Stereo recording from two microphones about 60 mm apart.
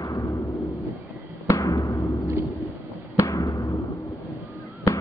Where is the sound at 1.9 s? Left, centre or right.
Left.